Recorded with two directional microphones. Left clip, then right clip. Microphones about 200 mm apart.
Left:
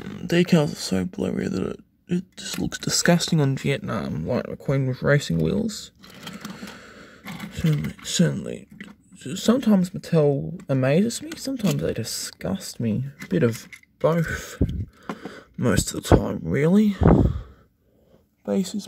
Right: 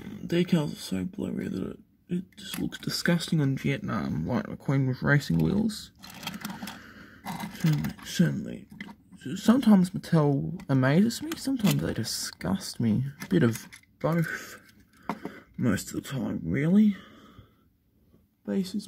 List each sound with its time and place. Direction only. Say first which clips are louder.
0.1 s speech: left 7 dB; 45° left (ahead or behind)
3.5 s speech: left 5 dB; 25° left (ahead or behind)
6.5 s a sound: left 2 dB; 20° left (ahead or behind)
8.0 s speech: left 8 dB; 25° left (ahead or behind)
14.0 s speech: left 7 dB; 25° left (ahead or behind)
18.4 s speech: left 6 dB; 40° left (ahead or behind)